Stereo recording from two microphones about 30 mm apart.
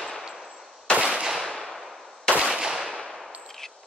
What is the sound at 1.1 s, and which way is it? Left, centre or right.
Gunshot, centre.